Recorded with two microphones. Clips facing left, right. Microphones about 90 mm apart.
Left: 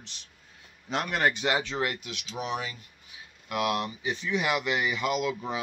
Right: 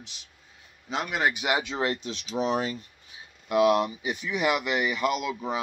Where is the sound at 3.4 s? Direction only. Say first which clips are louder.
Right 7 dB; 25° right (ahead or behind).